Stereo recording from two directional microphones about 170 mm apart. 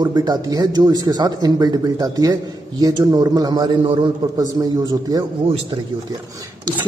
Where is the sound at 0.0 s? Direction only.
25° right (ahead or behind).